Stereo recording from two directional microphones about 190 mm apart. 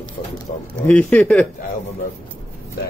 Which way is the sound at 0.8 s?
5° left (ahead or behind).